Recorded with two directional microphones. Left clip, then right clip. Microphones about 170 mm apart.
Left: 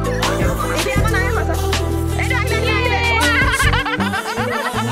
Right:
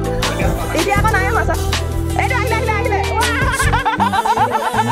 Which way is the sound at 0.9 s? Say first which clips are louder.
Right 4 dB; 65° right (ahead or behind).